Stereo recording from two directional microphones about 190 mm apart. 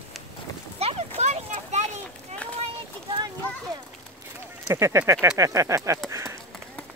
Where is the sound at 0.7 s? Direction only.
35° right (ahead or behind).